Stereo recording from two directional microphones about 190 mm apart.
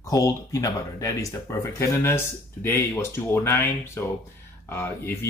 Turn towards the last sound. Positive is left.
turn(degrees=10)  # may be behind; listen again after turning